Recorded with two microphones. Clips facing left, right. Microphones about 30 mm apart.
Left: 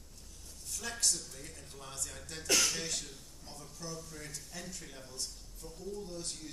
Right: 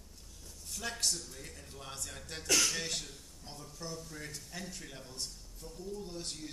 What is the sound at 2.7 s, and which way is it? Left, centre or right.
A man's voice, centre.